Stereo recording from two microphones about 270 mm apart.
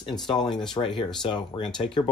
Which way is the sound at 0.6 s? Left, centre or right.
Centre.